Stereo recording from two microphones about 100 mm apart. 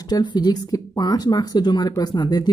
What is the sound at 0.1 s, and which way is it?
Speech, 45° left (ahead or behind).